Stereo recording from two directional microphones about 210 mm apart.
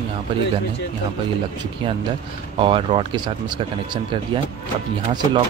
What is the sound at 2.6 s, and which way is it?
Speech, 25° right (ahead or behind).